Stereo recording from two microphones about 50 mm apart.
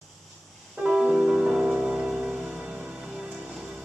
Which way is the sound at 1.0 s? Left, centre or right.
Centre.